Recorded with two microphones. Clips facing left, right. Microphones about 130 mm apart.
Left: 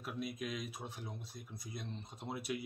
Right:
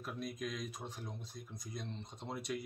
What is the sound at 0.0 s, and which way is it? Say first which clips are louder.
Speech: even; 5° left (ahead or behind).